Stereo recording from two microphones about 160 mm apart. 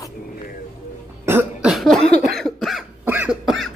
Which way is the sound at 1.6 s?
Centre (ahead or behind).